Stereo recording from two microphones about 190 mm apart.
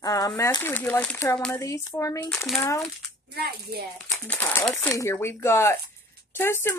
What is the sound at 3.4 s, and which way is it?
Speech, 55° right (ahead or behind).